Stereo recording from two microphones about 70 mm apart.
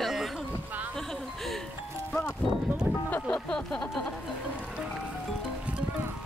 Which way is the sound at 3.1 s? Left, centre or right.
Left.